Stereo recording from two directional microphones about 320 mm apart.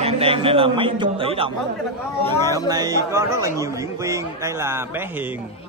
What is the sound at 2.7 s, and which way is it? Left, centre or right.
A man's voice, centre.